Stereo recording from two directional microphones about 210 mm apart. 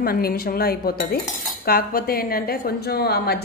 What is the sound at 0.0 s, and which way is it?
Cutlery, 45° left (ahead or behind).